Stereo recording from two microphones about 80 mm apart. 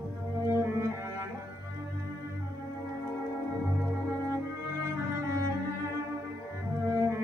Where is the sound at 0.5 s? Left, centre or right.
Right.